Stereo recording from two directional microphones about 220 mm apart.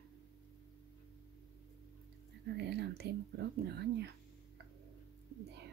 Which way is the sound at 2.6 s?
50° right (ahead or behind).